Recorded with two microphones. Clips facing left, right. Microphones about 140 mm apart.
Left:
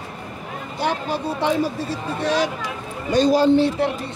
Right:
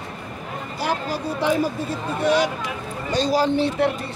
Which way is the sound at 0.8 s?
25° left (ahead or behind).